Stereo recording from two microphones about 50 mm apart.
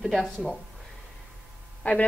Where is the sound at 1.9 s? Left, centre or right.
Left.